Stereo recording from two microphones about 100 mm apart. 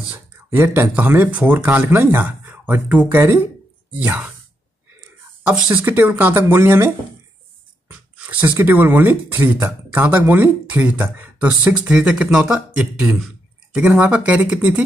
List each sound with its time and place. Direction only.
0.5 s speech: 20° right (ahead or behind)
5.5 s speech: 10° right (ahead or behind)
7.9 s speech: 15° right (ahead or behind)